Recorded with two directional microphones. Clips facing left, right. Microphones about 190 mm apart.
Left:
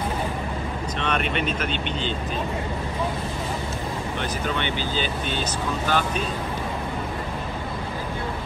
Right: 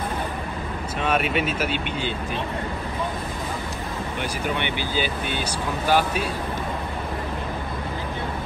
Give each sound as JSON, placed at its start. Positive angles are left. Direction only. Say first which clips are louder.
{"t": 1.0, "sound": "speech", "louder": "right 3 dB", "side_deg": -5}
{"t": 4.2, "sound": "speech", "louder": "right 1 dB", "side_deg": -15}